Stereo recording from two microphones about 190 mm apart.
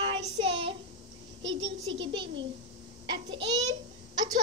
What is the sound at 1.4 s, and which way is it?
Speech, 75° right (ahead or behind).